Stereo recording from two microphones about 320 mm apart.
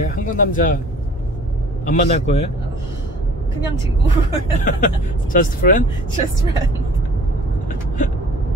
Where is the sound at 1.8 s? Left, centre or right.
Left.